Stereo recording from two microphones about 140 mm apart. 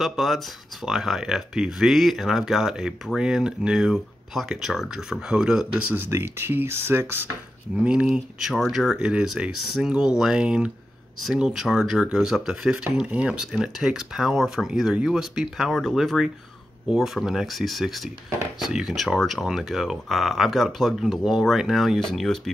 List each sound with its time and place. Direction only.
0.0 s speech: centre (ahead or behind)
5.9 s speech: 15° right (ahead or behind); by 22.4 s 5° left (ahead or behind)